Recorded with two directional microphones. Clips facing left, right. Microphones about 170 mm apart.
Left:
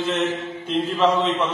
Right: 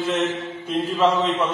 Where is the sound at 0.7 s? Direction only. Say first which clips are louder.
Even; 10° right (ahead or behind).